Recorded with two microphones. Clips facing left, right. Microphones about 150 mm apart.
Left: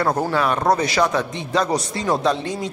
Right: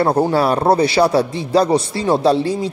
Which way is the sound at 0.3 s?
35° right (ahead or behind).